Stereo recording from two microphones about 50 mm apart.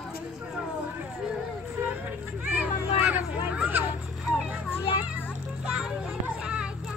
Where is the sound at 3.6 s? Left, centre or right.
Right.